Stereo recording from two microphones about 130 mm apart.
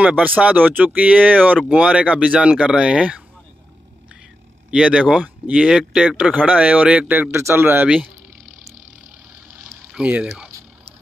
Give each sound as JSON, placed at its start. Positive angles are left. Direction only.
{"t": 0.0, "sound": "speech", "side_deg": -10}
{"t": 4.6, "sound": "speech", "side_deg": -5}
{"t": 9.7, "sound": "a sound", "side_deg": -10}